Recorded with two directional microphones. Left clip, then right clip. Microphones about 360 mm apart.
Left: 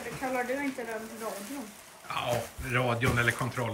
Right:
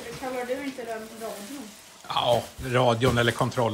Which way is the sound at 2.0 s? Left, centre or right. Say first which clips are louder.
Right 8 dB; centre.